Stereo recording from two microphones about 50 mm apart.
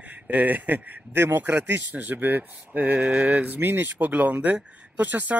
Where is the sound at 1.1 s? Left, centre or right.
Right.